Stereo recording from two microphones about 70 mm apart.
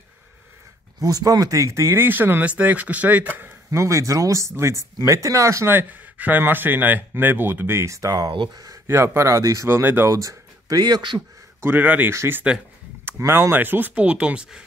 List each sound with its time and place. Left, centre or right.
1.0 s speech: right
2.0 s speech: right
3.7 s speech: right
5.7 s speech: right
7.9 s speech: right
8.8 s speech: right
9.7 s speech: right
10.0 s speech: right
11.6 s speech: right
12.1 s speech: right; by 14.6 s centre